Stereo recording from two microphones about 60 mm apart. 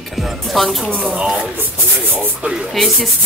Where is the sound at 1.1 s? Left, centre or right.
Centre.